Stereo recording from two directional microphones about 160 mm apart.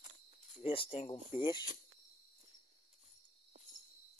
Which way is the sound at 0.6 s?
35° left (ahead or behind).